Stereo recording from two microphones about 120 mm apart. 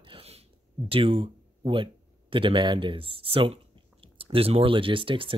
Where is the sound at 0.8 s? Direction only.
50° right (ahead or behind).